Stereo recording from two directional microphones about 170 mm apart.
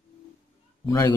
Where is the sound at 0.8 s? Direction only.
20° left (ahead or behind).